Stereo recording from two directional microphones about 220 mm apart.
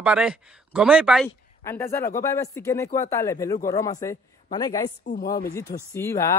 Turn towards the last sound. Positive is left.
turn(degrees=10)  # may be behind; listen again after turning